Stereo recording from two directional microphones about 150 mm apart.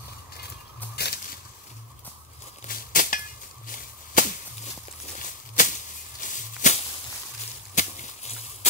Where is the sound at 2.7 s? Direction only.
70° left (ahead or behind).